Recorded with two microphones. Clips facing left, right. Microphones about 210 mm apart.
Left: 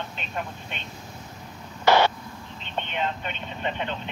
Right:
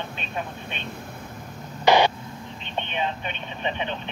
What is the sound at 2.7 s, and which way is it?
Speech, 15° right (ahead or behind).